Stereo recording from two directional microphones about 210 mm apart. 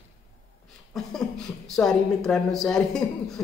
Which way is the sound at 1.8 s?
5° left (ahead or behind).